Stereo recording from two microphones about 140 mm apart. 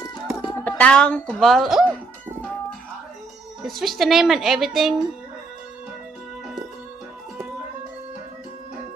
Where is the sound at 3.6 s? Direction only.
Centre (ahead or behind).